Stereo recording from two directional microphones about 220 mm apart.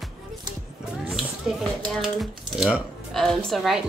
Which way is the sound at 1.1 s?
Centre (ahead or behind).